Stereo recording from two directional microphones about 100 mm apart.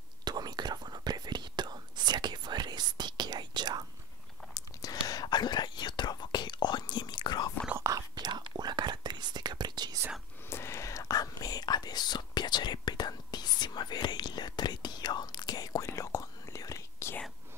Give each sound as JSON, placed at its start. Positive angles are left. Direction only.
{"t": 0.2, "sound": "whispering", "side_deg": -45}
{"t": 4.6, "sound": "whispering", "side_deg": 35}
{"t": 7.7, "sound": "whispering", "side_deg": -30}
{"t": 8.1, "sound": "whispering", "side_deg": -45}
{"t": 10.5, "sound": "whispering", "side_deg": 25}
{"t": 15.8, "sound": "whispering", "side_deg": 30}